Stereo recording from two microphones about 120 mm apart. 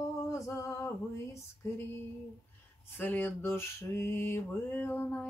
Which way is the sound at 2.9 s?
15° left (ahead or behind).